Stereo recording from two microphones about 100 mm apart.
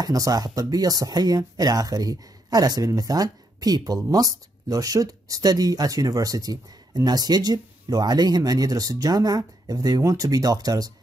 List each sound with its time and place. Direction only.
0.0 s speech: 40° right (ahead or behind)